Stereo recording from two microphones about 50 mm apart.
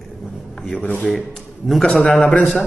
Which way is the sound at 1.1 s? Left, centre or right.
Centre.